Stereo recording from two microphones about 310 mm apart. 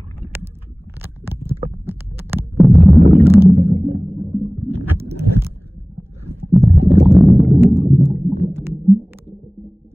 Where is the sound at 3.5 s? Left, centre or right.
Centre.